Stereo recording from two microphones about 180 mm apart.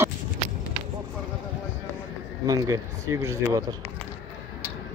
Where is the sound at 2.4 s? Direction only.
20° right (ahead or behind).